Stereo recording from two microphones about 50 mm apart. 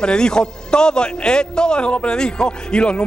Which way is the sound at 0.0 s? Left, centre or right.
Centre.